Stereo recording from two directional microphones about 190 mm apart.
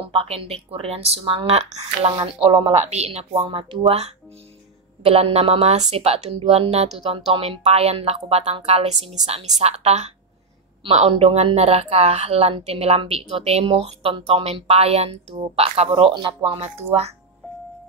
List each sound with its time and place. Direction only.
0.0 s a woman's voice: 30° right (ahead or behind)